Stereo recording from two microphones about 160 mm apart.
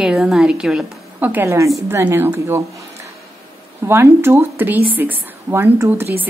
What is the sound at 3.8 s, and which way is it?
A woman's voice, 15° right (ahead or behind).